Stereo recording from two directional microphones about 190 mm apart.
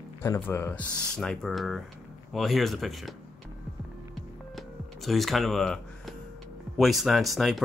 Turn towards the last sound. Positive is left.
turn(degrees=0)  # may be behind; listen again after turning